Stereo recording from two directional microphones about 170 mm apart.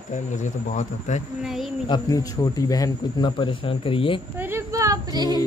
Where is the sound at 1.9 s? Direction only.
20° left (ahead or behind).